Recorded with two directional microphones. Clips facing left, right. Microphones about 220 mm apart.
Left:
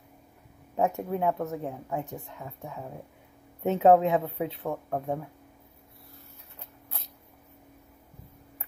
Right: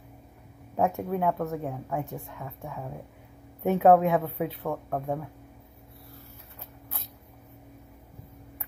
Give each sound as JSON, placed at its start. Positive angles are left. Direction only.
{"t": 0.7, "sound": "a woman's voice", "side_deg": 20}